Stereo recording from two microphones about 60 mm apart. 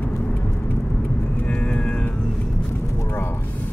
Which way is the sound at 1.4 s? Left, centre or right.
Centre.